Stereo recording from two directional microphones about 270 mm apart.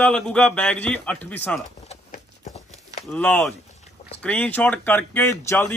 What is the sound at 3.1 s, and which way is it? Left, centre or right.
Speech, centre.